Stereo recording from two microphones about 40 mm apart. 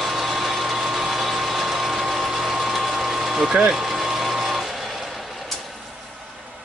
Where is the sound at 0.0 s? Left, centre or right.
Centre.